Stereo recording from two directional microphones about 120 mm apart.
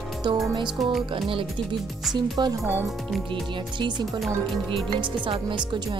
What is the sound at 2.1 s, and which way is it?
Speech, 35° right (ahead or behind).